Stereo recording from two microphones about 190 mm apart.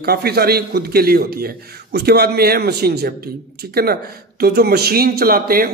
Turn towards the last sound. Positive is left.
turn(degrees=-50)  # may be behind; listen again after turning